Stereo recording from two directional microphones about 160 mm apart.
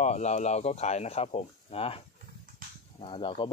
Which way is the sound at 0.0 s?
45° left (ahead or behind).